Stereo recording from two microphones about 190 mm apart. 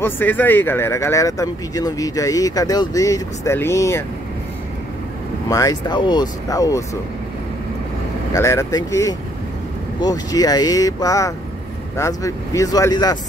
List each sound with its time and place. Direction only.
0.0 s speech: 10° left (ahead or behind)
5.5 s speech: 20° left (ahead or behind)
8.3 s speech: 15° left (ahead or behind)